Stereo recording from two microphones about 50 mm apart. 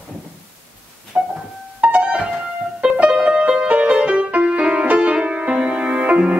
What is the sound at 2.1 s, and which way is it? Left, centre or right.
Music, centre.